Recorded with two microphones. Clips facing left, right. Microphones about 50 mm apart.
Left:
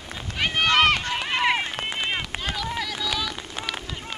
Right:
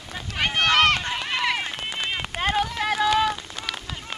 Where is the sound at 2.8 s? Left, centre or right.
Right.